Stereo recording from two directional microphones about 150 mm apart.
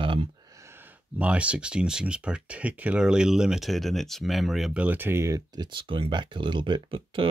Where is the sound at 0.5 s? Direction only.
20° right (ahead or behind).